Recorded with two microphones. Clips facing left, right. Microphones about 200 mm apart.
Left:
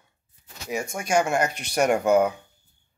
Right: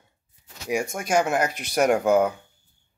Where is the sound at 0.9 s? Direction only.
5° right (ahead or behind).